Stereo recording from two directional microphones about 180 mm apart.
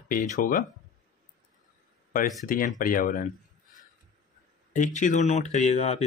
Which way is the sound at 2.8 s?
50° left (ahead or behind).